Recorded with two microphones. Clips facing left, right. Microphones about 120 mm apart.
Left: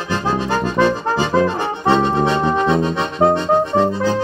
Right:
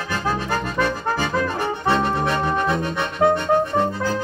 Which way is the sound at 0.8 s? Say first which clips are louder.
Left 6 dB; 25° left (ahead or behind).